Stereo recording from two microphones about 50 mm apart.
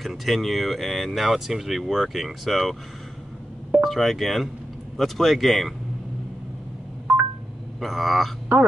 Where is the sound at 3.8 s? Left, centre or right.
Centre.